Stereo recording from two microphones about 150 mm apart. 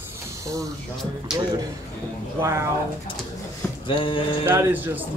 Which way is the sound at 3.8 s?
35° left (ahead or behind).